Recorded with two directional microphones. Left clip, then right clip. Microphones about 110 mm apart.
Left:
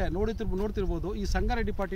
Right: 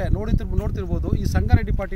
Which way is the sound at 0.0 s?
50° right (ahead or behind).